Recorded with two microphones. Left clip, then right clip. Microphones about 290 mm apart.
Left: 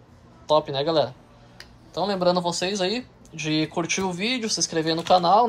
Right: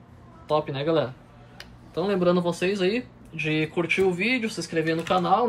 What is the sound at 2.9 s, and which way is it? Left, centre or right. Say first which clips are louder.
A man's voice: right 1 dB; centre.